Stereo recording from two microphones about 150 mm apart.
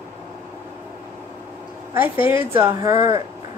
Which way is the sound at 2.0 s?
15° right (ahead or behind).